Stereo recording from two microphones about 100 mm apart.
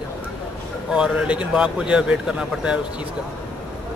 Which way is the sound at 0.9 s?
10° right (ahead or behind).